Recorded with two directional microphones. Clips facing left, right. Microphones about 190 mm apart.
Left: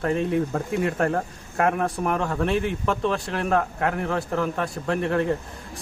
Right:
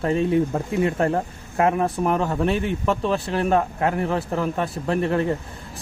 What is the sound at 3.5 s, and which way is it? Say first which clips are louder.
A man's voice: even; 5° right (ahead or behind).